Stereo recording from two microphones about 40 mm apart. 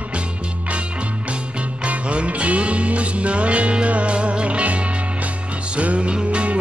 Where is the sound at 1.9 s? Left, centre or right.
Right.